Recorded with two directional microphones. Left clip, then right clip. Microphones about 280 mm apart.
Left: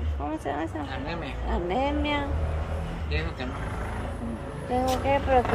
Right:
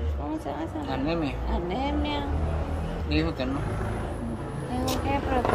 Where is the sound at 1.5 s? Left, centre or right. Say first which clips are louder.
Left 5 dB; centre.